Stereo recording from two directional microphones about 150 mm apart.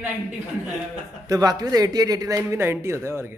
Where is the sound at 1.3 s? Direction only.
25° right (ahead or behind).